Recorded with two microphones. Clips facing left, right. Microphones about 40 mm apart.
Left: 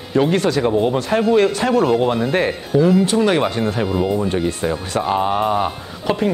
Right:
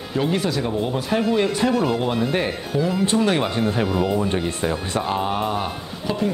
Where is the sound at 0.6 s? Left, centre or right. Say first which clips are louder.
Left 7 dB; left.